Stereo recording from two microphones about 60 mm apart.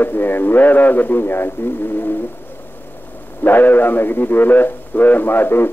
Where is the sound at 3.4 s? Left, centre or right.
Left.